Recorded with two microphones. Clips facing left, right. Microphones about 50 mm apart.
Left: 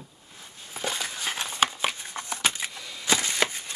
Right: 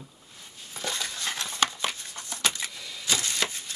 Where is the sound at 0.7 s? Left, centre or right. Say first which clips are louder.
Left 2 dB; centre.